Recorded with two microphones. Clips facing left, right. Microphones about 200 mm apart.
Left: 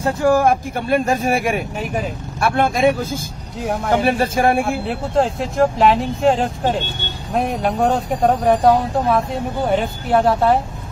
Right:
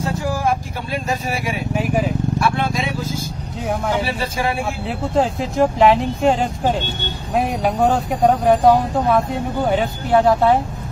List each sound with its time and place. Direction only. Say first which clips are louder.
0.0 s speech: left 6 dB; 55° left (ahead or behind)
4.6 s speech: left 2 dB; centre (ahead or behind)